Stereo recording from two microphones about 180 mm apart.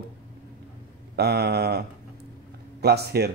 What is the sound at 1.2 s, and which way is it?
Speech, 60° right (ahead or behind).